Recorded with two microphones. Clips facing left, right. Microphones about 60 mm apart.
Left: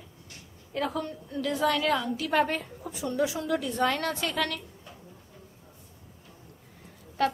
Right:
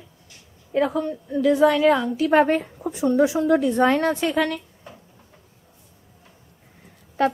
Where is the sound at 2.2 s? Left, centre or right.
Right.